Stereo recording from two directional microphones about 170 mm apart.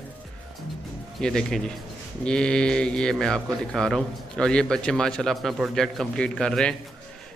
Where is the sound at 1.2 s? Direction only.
5° left (ahead or behind).